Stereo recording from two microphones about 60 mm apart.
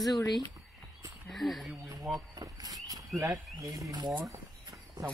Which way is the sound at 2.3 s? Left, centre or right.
Right.